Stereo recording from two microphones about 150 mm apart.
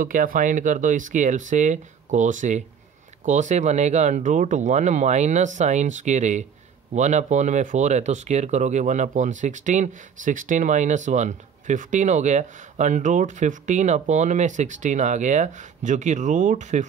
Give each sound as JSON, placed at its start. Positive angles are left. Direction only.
{"t": 0.0, "sound": "speech", "side_deg": -65}